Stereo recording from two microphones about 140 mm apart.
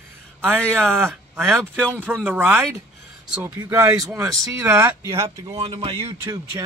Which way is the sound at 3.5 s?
25° right (ahead or behind).